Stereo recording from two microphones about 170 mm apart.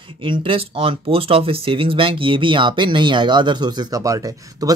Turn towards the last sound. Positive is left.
turn(degrees=-20)  # may be behind; listen again after turning